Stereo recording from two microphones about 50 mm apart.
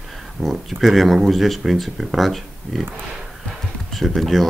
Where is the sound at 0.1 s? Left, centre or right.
Centre.